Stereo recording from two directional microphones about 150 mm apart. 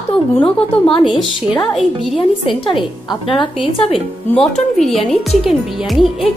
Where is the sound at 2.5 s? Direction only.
35° left (ahead or behind).